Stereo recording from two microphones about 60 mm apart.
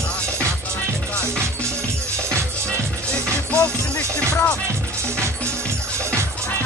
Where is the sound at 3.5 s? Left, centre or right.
Left.